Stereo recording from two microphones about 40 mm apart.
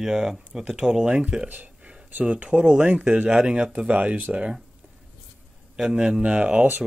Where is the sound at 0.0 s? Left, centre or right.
Centre.